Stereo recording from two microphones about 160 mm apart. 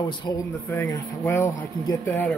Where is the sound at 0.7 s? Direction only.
15° left (ahead or behind).